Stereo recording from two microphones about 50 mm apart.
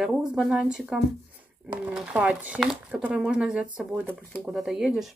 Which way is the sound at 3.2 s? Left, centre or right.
Centre.